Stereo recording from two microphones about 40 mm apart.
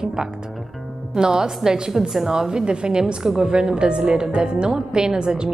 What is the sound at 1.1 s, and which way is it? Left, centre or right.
A woman's voice, centre.